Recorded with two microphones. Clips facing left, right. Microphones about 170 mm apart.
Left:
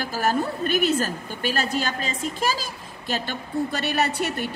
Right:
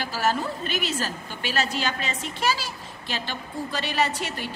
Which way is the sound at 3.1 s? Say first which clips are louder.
Left 5 dB; 55° left (ahead or behind).